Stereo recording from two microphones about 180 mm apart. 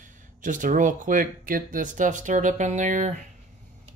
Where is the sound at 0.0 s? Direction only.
45° right (ahead or behind).